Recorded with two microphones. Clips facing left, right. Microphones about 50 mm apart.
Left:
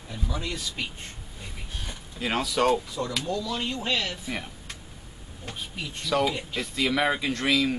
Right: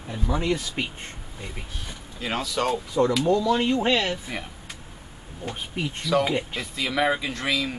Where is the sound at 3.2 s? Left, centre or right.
Right.